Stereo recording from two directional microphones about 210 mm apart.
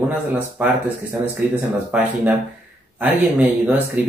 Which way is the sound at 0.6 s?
5° right (ahead or behind).